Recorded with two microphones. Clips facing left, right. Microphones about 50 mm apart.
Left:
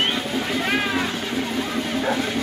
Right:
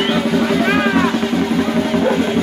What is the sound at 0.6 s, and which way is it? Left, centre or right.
Music, right.